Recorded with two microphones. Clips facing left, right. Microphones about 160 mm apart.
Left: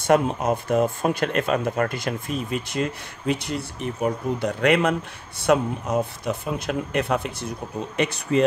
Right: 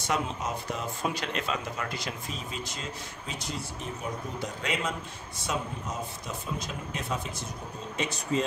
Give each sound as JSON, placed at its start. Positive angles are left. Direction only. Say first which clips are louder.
{"t": 0.0, "sound": "speech", "louder": "left 11 dB", "side_deg": 55}